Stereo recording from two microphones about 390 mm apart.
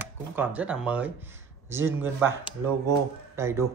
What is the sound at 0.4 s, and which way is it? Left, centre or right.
Speech, centre.